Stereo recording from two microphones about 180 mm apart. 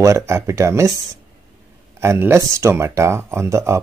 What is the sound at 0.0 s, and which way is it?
Speech, 15° right (ahead or behind).